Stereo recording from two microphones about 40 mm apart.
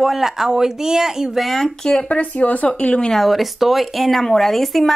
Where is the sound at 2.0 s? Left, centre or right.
Left.